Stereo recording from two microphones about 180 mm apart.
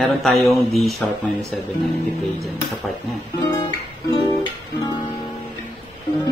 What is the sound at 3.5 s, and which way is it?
Music, 15° left (ahead or behind).